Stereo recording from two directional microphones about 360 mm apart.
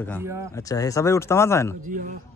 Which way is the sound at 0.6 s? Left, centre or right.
Centre.